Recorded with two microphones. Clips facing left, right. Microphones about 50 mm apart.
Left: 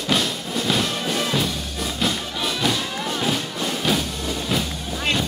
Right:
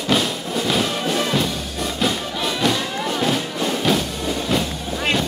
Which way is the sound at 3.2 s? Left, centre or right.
Centre.